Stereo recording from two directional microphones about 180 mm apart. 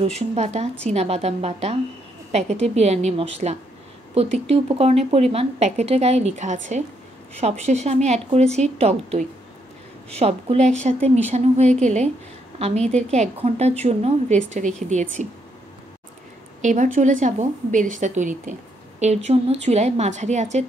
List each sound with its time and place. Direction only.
0.0 s speech: 35° right (ahead or behind)
16.6 s a woman's voice: 45° right (ahead or behind)